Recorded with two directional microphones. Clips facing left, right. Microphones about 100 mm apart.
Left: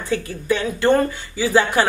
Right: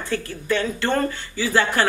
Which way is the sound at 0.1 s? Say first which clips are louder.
Left 3 dB; 10° left (ahead or behind).